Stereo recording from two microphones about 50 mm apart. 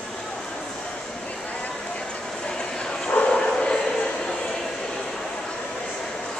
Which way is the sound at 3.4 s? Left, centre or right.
Centre.